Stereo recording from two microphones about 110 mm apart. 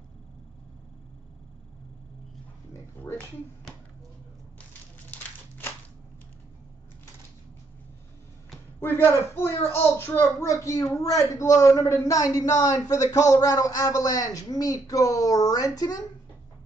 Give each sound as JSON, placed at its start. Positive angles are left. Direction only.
{"t": 3.0, "sound": "speech", "side_deg": 20}
{"t": 8.8, "sound": "speech", "side_deg": 20}